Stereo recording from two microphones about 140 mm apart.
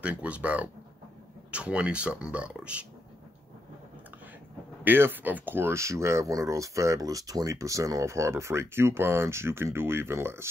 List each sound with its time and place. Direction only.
0.0 s speech: 10° right (ahead or behind)
4.8 s speech: 15° right (ahead or behind)